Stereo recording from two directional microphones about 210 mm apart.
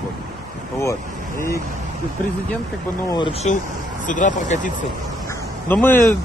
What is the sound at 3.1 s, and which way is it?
Speech, 25° left (ahead or behind).